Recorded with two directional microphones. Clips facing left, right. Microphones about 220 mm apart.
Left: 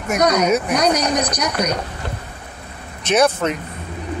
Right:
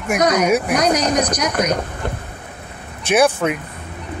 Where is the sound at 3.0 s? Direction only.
10° right (ahead or behind).